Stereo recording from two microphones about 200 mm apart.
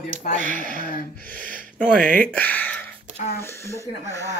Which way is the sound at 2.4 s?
10° left (ahead or behind).